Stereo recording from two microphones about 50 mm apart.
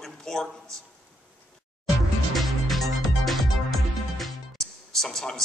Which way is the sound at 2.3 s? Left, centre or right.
Centre.